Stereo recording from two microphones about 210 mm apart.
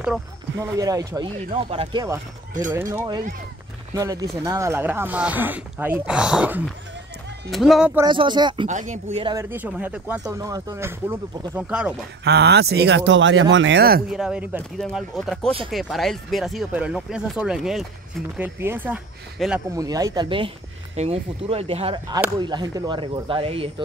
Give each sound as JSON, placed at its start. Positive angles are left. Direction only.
{"t": 0.0, "sound": "speech", "side_deg": -5}
{"t": 8.0, "sound": "speech", "side_deg": -20}
{"t": 8.6, "sound": "speech", "side_deg": -35}
{"t": 9.2, "sound": "speech", "side_deg": -15}
{"t": 12.3, "sound": "speech", "side_deg": -55}
{"t": 14.1, "sound": "speech", "side_deg": -5}
{"t": 19.4, "sound": "speech", "side_deg": 0}
{"t": 19.7, "sound": "speech", "side_deg": -15}